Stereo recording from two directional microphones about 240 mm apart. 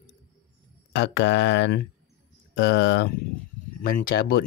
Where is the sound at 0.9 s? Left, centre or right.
Left.